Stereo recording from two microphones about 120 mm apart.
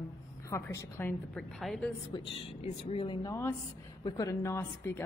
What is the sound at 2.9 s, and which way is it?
Speech, 50° left (ahead or behind).